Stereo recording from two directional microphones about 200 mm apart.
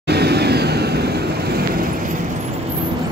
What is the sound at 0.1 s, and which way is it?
Vehicle, 55° right (ahead or behind).